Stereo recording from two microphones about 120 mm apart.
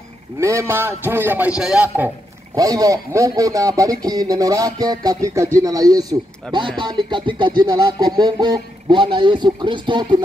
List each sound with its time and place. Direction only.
0.4 s speech: 25° right (ahead or behind)
2.5 s speech: 30° right (ahead or behind)
5.6 s a sound: 30° right (ahead or behind)